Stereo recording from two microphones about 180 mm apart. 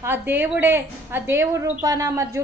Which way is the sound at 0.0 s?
10° right (ahead or behind).